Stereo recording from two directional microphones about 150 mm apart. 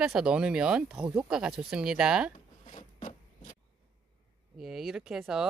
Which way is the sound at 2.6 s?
55° left (ahead or behind).